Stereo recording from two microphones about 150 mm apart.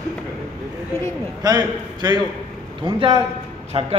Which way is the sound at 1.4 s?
25° right (ahead or behind).